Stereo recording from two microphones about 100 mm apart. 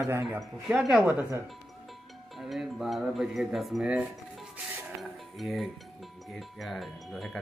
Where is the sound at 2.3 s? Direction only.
Centre (ahead or behind).